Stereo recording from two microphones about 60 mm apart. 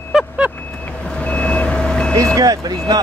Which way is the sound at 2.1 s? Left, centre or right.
Right.